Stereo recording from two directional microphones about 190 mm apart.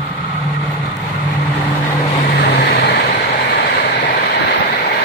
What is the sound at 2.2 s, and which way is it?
Vehicle, 55° left (ahead or behind).